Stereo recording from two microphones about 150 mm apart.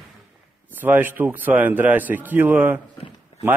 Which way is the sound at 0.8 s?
10° right (ahead or behind).